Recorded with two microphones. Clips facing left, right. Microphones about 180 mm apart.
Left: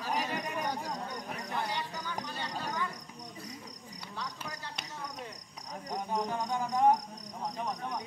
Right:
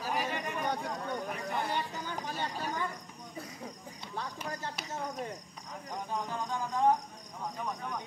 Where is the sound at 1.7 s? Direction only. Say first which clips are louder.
Right 2 dB; 50° right (ahead or behind).